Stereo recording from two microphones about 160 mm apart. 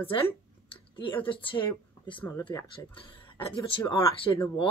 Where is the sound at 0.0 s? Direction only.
35° left (ahead or behind).